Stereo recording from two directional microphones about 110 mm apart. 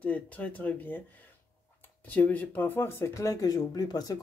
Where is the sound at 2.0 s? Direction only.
15° left (ahead or behind).